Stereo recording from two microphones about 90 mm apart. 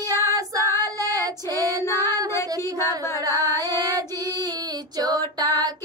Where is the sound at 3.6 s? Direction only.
45° right (ahead or behind).